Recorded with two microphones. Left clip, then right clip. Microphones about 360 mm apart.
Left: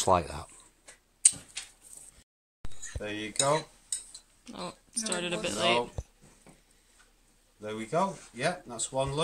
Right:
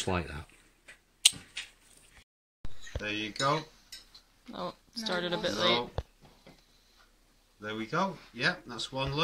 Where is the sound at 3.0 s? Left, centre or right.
Centre.